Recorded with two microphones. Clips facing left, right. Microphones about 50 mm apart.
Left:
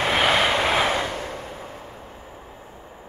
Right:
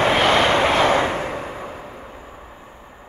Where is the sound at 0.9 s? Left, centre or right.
Right.